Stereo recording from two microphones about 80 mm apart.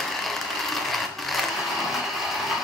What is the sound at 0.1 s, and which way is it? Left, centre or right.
Sewing machine, centre.